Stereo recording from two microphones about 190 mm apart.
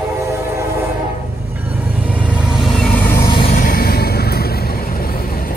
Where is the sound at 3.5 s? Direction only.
50° left (ahead or behind).